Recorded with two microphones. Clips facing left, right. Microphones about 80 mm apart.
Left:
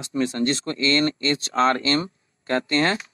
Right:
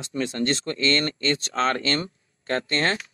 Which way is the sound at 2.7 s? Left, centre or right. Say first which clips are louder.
Left 3 dB; centre.